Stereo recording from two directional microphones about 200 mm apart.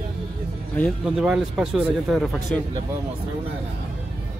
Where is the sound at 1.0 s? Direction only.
5° right (ahead or behind).